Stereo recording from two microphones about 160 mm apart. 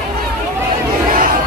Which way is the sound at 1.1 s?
60° right (ahead or behind).